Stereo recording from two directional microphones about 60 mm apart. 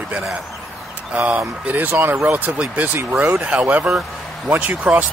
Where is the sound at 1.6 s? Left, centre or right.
Right.